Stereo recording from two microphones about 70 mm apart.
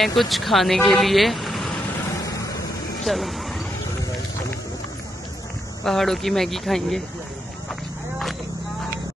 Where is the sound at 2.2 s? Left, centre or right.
Left.